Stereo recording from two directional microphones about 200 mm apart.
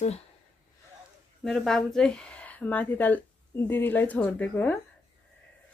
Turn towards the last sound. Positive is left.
turn(degrees=5)  # may be behind; listen again after turning